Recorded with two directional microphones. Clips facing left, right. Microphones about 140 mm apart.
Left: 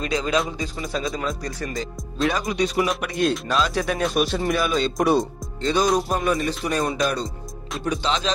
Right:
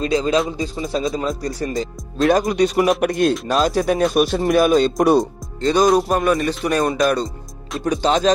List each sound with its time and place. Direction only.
0.0 s speech: 30° right (ahead or behind)
2.2 s speech: 50° right (ahead or behind)
5.9 s music: 65° right (ahead or behind)
7.8 s speech: 45° right (ahead or behind)